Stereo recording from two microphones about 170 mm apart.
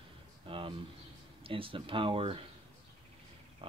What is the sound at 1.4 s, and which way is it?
Speech, 30° right (ahead or behind).